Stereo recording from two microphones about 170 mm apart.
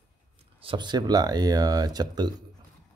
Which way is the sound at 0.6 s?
30° right (ahead or behind).